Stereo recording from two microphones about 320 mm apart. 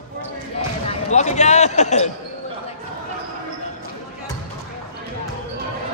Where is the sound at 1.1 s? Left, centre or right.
Left.